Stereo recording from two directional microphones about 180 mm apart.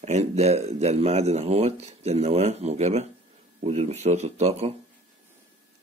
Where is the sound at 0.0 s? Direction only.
35° right (ahead or behind).